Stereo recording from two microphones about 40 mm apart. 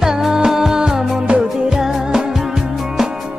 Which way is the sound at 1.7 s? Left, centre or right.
Centre.